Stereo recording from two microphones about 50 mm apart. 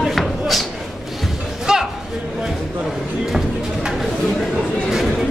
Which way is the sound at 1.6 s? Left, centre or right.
Centre.